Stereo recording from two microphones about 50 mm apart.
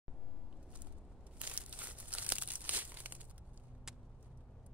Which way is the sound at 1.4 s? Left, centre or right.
Right.